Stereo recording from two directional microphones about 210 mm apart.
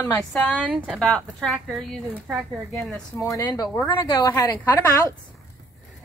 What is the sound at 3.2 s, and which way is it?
A woman's voice, 15° left (ahead or behind).